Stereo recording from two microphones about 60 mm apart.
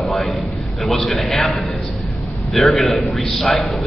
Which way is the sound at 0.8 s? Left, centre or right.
Centre.